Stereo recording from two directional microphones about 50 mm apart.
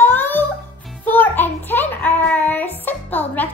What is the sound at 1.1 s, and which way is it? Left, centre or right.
Child singing, left.